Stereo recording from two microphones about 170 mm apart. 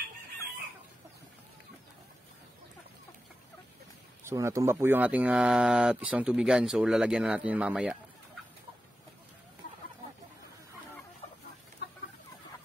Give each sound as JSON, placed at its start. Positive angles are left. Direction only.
{"t": 4.3, "sound": "speech", "side_deg": -15}
{"t": 11.8, "sound": "chicken", "side_deg": 85}